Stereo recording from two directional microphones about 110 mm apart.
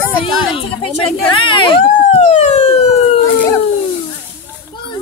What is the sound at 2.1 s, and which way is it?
Police car, 85° left.